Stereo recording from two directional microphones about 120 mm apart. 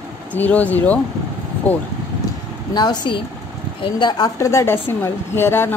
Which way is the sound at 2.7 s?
35° left (ahead or behind).